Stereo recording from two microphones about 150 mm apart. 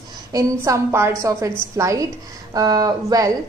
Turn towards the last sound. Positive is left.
turn(degrees=-25)  # may be behind; listen again after turning